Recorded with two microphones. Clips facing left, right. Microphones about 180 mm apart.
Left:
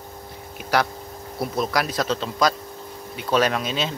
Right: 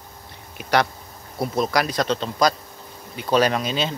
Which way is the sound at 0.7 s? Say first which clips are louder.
Right 2 dB; 5° left (ahead or behind).